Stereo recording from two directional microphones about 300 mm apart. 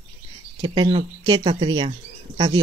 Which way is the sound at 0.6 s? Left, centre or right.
Centre.